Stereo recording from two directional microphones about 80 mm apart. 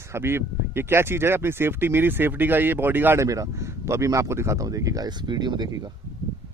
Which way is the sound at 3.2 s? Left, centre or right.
Right.